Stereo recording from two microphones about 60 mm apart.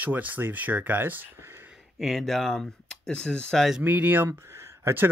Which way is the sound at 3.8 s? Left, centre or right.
Right.